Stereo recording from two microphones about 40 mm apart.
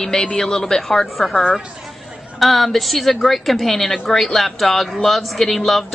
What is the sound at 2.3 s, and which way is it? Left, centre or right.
A woman's voice, centre.